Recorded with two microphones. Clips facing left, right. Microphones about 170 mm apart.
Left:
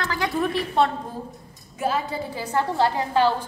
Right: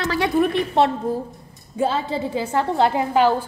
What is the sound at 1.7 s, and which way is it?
A woman's voice, 25° right (ahead or behind).